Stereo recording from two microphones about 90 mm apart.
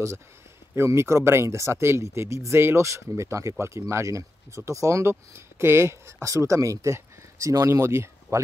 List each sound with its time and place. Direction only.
0.7 s speech: 30° right (ahead or behind)